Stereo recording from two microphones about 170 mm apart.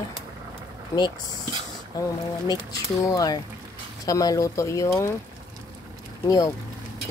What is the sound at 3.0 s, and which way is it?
A woman's voice, 20° left (ahead or behind).